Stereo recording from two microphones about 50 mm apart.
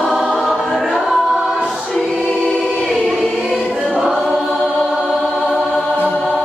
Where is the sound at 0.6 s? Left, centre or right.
Centre.